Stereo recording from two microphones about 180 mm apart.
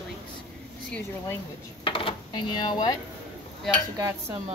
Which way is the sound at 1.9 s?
30° left (ahead or behind).